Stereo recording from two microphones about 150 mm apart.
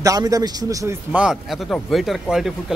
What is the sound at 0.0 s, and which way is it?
Speech, 25° right (ahead or behind).